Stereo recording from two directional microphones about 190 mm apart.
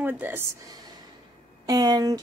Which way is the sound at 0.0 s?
10° right (ahead or behind).